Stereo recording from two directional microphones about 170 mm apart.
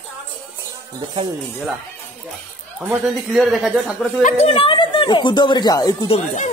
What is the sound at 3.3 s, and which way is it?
Speech, centre (ahead or behind).